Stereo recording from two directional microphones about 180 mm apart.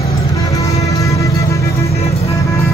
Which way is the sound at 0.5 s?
15° left (ahead or behind).